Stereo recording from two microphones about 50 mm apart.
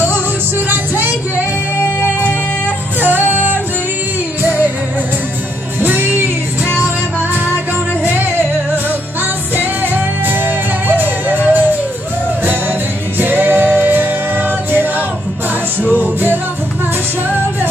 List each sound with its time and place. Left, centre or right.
3.0 s music: right
5.8 s music: right
10.2 s music: right
13.2 s music: right